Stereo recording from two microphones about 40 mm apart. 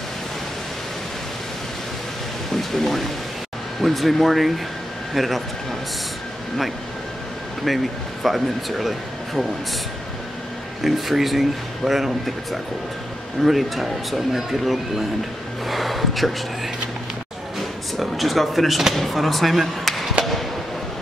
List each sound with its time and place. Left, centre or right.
2.5 s a man's voice: centre
7.6 s speech: centre
10.8 s a man's voice: centre
13.4 s a man's voice: centre
17.9 s a man's voice: centre